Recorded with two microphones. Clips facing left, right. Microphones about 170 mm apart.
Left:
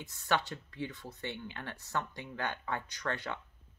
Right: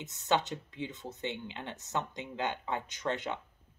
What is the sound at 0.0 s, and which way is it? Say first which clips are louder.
Speech: right 3 dB; 20° right (ahead or behind).